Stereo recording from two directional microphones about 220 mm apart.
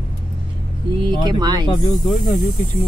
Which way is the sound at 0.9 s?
20° right (ahead or behind).